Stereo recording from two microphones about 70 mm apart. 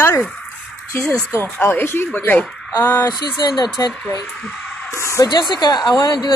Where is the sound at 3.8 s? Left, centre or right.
Left.